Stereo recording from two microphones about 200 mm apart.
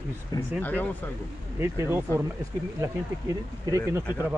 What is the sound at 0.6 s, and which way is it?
Speech, 10° left (ahead or behind).